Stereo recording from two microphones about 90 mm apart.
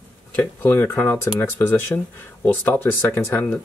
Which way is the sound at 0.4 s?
25° left (ahead or behind).